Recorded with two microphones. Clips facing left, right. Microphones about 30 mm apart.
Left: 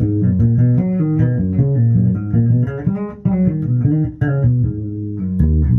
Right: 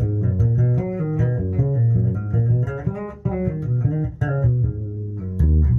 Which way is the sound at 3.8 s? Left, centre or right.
Centre.